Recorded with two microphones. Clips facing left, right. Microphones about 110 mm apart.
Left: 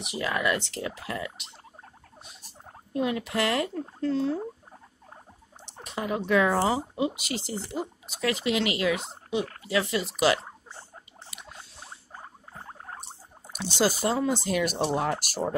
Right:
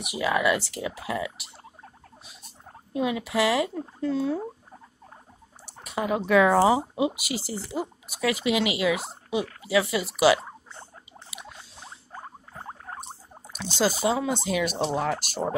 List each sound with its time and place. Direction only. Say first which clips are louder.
0.0 s speech: right 4 dB; 15° right (ahead or behind)
2.9 s speech: right 1 dB; 10° right (ahead or behind)
5.9 s speech: right 3 dB; 20° right (ahead or behind)
11.2 s snort: right 3 dB; centre (ahead or behind)
14.0 s speech: right 1 dB; 5° right (ahead or behind)